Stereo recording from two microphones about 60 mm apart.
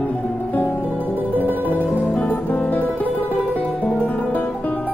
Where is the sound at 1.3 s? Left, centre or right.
Right.